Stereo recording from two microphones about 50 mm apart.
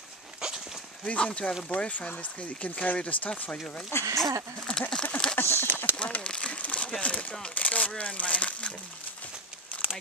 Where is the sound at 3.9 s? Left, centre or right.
Left.